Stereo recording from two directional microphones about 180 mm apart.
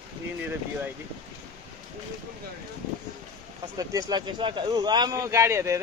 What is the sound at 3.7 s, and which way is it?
Speech, 20° right (ahead or behind).